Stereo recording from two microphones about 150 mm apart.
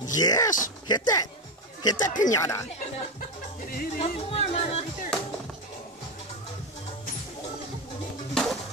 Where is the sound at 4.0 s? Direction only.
45° left (ahead or behind).